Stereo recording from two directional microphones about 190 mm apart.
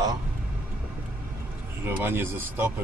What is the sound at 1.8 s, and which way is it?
Speech, 10° right (ahead or behind).